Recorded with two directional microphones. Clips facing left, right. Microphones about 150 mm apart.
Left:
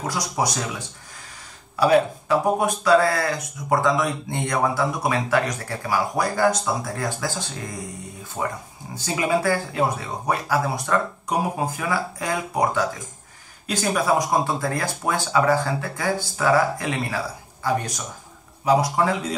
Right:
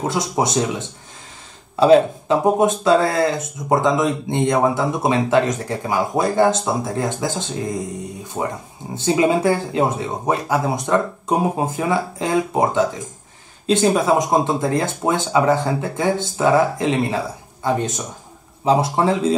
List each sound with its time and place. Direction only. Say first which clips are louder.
0.0 s speech: right 5 dB; 25° right (ahead or behind)